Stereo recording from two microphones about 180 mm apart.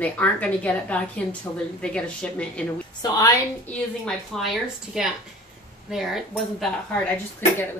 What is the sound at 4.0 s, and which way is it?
A woman's voice, centre (ahead or behind).